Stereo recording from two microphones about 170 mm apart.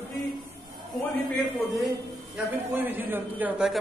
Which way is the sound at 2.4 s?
5° right (ahead or behind).